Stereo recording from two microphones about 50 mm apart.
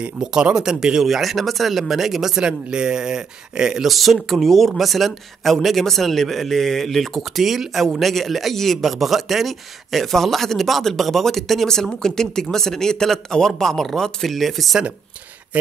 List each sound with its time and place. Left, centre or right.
0.0 s speech: centre
2.4 s speech: centre
3.8 s a man's voice: centre
15.5 s speech: right